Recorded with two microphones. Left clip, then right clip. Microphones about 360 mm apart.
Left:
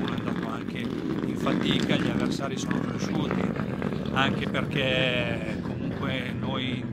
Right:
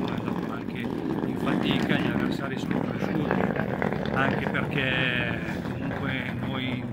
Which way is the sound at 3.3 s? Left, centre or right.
Right.